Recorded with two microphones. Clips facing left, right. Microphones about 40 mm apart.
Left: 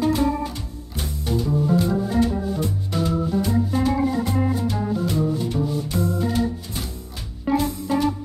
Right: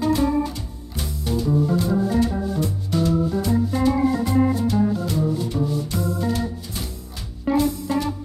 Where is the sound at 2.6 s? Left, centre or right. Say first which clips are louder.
Right 2 dB; centre.